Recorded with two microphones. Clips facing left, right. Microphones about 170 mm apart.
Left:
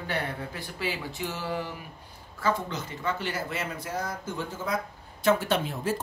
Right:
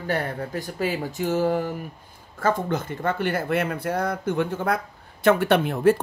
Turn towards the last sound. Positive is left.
turn(degrees=-60)  # may be behind; listen again after turning